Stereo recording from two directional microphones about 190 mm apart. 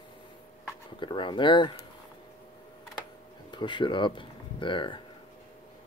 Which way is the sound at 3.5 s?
25° left (ahead or behind).